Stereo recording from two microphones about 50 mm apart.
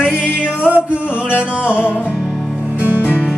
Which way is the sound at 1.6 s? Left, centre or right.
Left.